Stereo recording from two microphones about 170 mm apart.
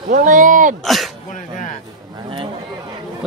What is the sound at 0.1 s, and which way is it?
Speech, 50° right (ahead or behind).